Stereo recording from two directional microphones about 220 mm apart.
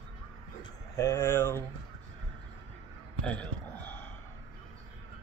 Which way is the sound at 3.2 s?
5° left (ahead or behind).